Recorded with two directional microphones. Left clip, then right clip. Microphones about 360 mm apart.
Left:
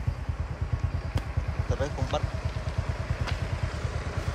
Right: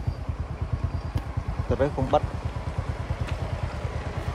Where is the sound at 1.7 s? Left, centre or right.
Centre.